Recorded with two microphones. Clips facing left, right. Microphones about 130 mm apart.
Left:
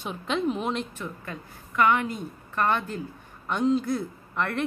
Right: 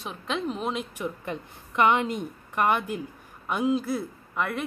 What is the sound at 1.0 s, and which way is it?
A woman's voice, 20° right (ahead or behind).